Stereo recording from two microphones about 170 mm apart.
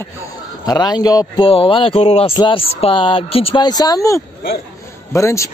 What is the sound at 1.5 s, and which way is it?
Speech, 35° left (ahead or behind).